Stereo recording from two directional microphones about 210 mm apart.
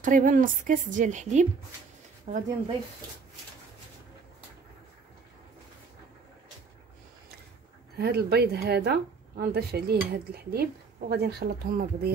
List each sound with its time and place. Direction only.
0.0 s a woman's voice: 40° right (ahead or behind)
8.0 s cutlery: 50° right (ahead or behind)